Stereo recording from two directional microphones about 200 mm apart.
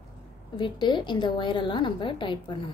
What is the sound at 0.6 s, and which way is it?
A woman's voice, 25° left (ahead or behind).